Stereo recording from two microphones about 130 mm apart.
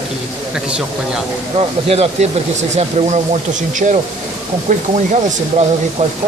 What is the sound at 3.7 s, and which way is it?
Speech, 80° right.